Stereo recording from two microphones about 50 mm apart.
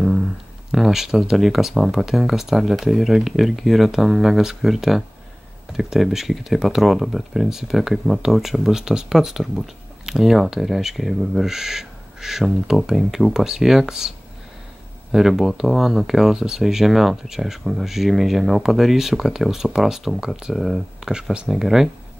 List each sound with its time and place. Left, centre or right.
0.7 s speech: centre
21.0 s speech: centre
21.5 s speech: centre